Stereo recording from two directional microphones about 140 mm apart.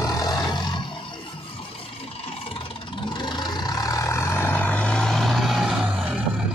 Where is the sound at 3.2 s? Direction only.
30° left (ahead or behind); by 6.0 s centre (ahead or behind).